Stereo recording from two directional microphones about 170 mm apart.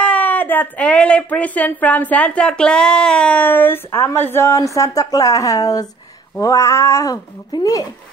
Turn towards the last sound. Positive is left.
turn(degrees=20)  # may be behind; listen again after turning